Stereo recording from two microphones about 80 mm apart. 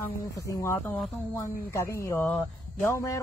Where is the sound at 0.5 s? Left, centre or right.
Left.